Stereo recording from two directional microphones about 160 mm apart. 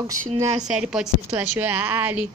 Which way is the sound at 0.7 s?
5° right (ahead or behind).